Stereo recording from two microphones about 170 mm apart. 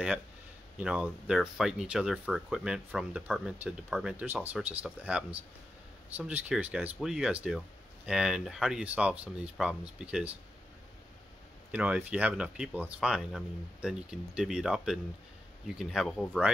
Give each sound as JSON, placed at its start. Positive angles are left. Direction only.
{"t": 0.7, "sound": "speech", "side_deg": -5}
{"t": 11.7, "sound": "speech", "side_deg": -10}